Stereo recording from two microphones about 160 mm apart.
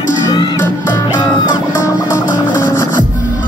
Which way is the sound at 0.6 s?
15° left (ahead or behind).